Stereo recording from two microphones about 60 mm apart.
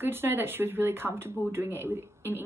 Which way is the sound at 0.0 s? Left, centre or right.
Right.